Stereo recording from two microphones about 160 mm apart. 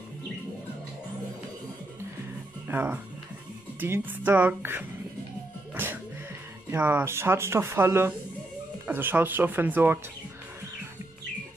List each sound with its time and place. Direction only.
2.7 s speech: 10° right (ahead or behind)